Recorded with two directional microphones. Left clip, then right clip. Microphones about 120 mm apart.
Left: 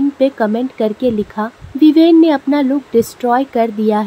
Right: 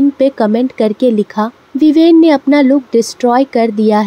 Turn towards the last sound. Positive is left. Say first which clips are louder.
# right 3 dB
turn(degrees=-40)  # may be behind; listen again after turning